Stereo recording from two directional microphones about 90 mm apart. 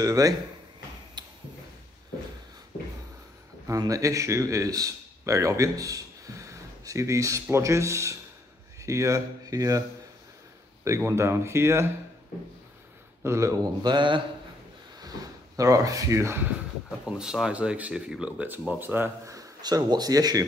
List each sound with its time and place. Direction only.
0.0 s speech: 40° right (ahead or behind)
1.2 s a sound: 55° right (ahead or behind)
3.6 s speech: 40° right (ahead or behind)
11.1 s speech: 30° right (ahead or behind)
13.2 s speech: 30° right (ahead or behind)
13.8 s a man's voice: 60° right (ahead or behind)
15.0 s speech: 45° right (ahead or behind)
17.0 s speech: 5° right (ahead or behind)
19.2 s speech: 40° right (ahead or behind)